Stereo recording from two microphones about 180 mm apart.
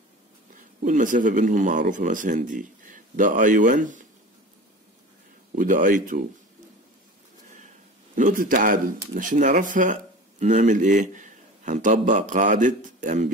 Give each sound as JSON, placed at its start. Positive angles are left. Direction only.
{"t": 0.6, "sound": "speech", "side_deg": -45}
{"t": 5.6, "sound": "speech", "side_deg": -50}
{"t": 8.2, "sound": "speech", "side_deg": -50}